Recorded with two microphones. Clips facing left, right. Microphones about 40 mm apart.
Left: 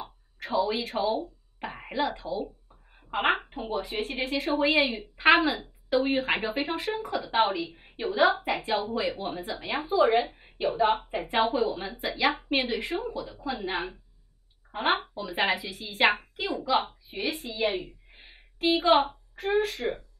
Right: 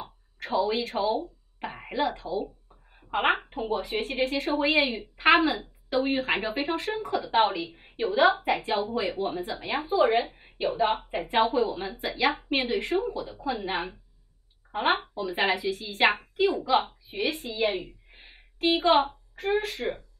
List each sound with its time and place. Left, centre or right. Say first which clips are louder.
0.0 s a sound: even; centre
3.5 s a woman's voice: right 2 dB; centre
13.1 s a woman's voice: right 1 dB; centre
13.5 s a woman's voice: right 2 dB; centre
16.8 s a sound: right 2 dB; centre
18.8 s a woman's voice: even; centre